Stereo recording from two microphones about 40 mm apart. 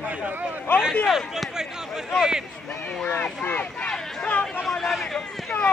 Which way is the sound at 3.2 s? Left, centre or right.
Left.